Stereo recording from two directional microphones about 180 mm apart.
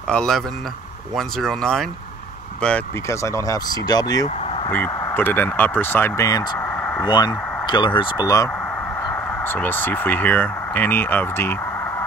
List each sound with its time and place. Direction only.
0.1 s speech: 5° left (ahead or behind)
3.2 s speech: 15° left (ahead or behind)
6.6 s a sound: 10° left (ahead or behind)
7.1 s speech: 25° left (ahead or behind)